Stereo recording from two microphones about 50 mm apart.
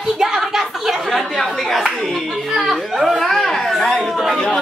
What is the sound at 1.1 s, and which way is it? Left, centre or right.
Speech, centre.